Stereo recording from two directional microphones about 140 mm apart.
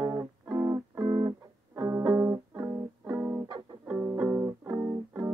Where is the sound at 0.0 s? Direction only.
20° right (ahead or behind).